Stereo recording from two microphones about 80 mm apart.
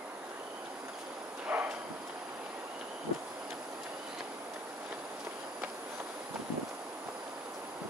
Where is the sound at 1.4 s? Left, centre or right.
Centre.